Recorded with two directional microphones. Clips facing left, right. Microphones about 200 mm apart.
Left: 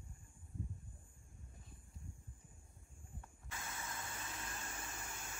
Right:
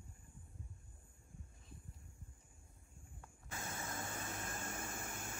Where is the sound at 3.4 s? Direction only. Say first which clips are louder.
Right 3 dB; 45° right (ahead or behind).